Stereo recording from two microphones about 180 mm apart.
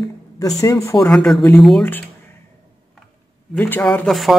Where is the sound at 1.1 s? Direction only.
Centre (ahead or behind).